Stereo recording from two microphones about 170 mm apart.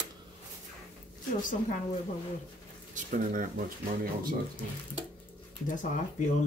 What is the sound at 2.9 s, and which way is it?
Speech, 50° right (ahead or behind).